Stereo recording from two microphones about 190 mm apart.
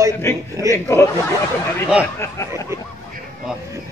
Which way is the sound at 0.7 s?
15° left (ahead or behind).